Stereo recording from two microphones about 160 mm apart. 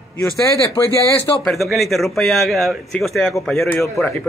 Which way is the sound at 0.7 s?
20° left (ahead or behind).